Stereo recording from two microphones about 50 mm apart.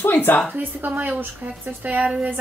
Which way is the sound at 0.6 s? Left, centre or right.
Right.